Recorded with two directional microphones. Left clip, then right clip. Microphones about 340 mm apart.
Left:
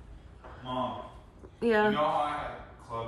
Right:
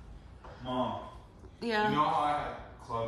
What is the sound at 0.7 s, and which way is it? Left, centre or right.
Speech, right.